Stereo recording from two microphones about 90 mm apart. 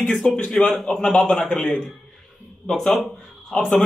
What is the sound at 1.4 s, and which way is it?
Speech, centre (ahead or behind).